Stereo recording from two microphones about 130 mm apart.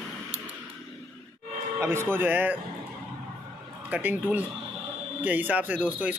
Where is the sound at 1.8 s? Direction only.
20° right (ahead or behind).